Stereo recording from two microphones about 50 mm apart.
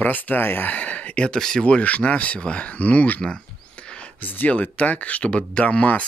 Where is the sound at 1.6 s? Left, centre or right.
Left.